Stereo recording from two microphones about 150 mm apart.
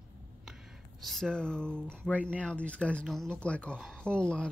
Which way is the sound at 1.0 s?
Centre (ahead or behind).